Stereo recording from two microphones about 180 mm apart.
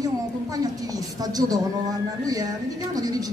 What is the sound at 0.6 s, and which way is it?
A man's voice, 20° right (ahead or behind).